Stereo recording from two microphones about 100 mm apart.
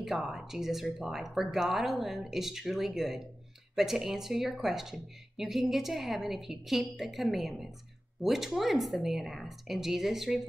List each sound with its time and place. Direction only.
0.0 s speech: 5° right (ahead or behind)